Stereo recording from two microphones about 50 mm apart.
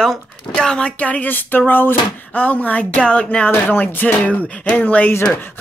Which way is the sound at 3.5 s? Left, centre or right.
Left.